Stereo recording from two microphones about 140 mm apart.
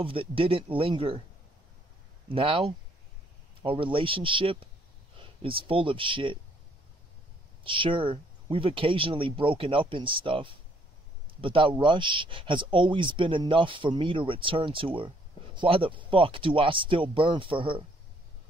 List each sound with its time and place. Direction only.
0.0 s speech: 40° right (ahead or behind)
2.2 s speech: 40° right (ahead or behind)
7.6 s speech: 40° right (ahead or behind)